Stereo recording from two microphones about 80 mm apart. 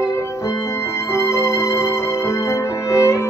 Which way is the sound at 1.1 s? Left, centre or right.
Left.